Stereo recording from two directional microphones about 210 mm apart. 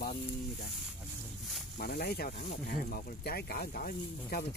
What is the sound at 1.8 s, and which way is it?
Speech, 45° left (ahead or behind).